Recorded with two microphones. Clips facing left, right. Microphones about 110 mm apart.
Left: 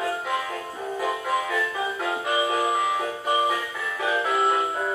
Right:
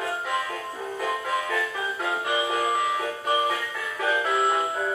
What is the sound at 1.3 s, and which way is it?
Music, 5° left (ahead or behind).